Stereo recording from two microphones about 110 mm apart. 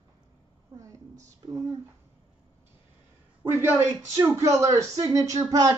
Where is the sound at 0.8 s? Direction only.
30° right (ahead or behind).